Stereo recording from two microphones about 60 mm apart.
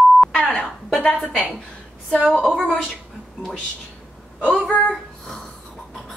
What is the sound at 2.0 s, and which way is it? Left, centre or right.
Speech, centre.